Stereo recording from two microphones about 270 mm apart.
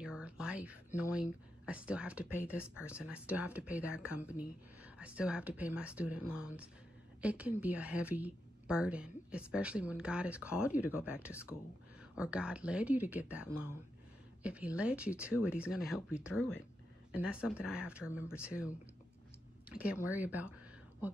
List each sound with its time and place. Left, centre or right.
0.0 s a sound: centre
1.1 s a woman's voice: centre
16.3 s speech: left
17.1 s a woman's voice: centre